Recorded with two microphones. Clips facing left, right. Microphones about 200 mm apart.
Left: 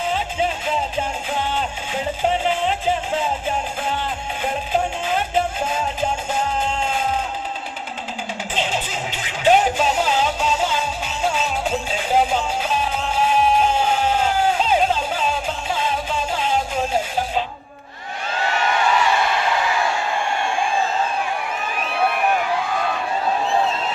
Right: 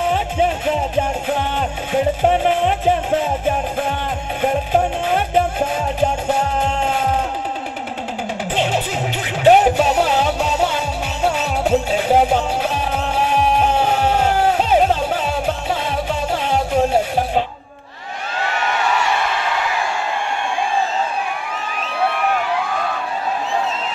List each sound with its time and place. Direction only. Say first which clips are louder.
0.0 s music: right 4 dB; 60° right (ahead or behind)
8.5 s music: right 5 dB; 60° right (ahead or behind)